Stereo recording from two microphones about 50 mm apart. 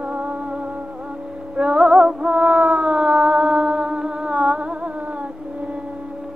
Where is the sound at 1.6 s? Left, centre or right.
Centre.